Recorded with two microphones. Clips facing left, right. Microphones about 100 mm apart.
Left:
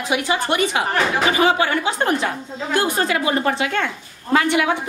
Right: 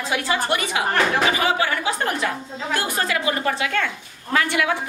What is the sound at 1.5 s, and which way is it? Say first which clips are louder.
A woman's voice: left 3 dB; 25° left (ahead or behind).